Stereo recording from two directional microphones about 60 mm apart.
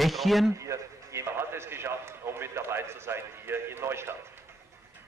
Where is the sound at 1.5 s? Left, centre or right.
Right.